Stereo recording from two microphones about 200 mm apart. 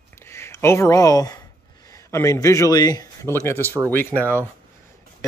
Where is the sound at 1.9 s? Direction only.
15° left (ahead or behind).